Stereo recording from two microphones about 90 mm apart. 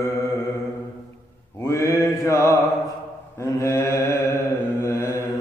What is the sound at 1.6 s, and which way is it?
Mantra, 30° left (ahead or behind).